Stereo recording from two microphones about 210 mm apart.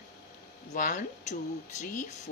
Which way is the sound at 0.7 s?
40° left (ahead or behind).